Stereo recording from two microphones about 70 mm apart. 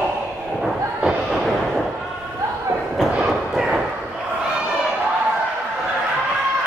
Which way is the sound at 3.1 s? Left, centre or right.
Centre.